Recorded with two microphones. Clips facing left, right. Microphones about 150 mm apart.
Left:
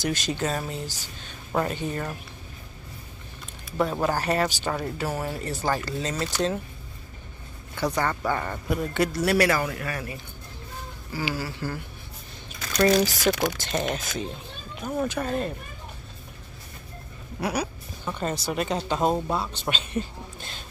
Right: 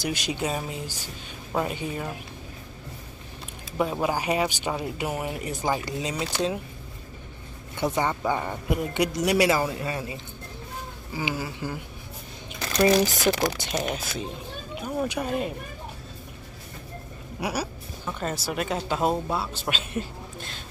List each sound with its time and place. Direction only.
0.0 s speech: 10° right (ahead or behind)
3.7 s speech: 10° right (ahead or behind)
7.7 s speech: 20° right (ahead or behind)
13.2 s speech: 35° right (ahead or behind)
13.6 s speech: 10° right (ahead or behind)
17.4 s speech: 5° right (ahead or behind)